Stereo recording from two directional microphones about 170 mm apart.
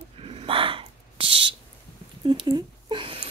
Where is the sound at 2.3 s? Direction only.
25° right (ahead or behind).